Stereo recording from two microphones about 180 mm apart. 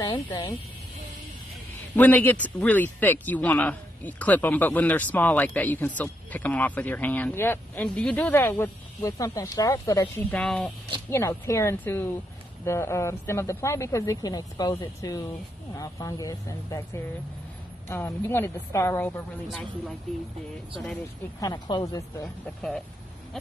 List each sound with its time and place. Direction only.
0.0 s speech: 25° left (ahead or behind)
2.0 s speech: 10° left (ahead or behind)
10.3 s speech: 5° left (ahead or behind)
11.1 s speech: 15° left (ahead or behind)
21.4 s speech: 20° left (ahead or behind)
22.2 s speech: 5° left (ahead or behind)